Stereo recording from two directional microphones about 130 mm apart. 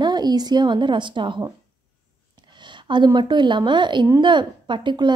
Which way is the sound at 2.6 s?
35° right (ahead or behind).